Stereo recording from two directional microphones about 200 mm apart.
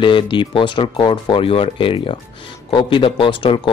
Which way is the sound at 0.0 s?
25° left (ahead or behind).